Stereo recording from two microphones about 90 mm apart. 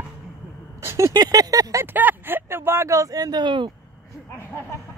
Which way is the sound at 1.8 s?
20° right (ahead or behind).